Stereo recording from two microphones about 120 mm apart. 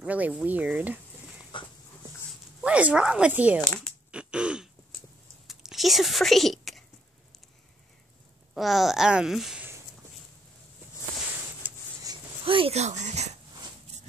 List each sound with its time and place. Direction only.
0.0 s speech: 10° right (ahead or behind)
1.5 s dog: 45° left (ahead or behind)
2.6 s speech: 10° right (ahead or behind)
3.6 s speech: 10° left (ahead or behind)
4.1 s a sound: 10° right (ahead or behind)
5.5 s biting: centre (ahead or behind)
8.5 s speech: centre (ahead or behind)
11.6 s a sound: 10° right (ahead or behind)
12.4 s speech: 50° right (ahead or behind)
12.7 s speech: 70° right (ahead or behind)